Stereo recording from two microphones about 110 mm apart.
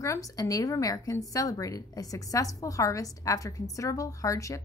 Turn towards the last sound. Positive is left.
turn(degrees=30)  # may be behind; listen again after turning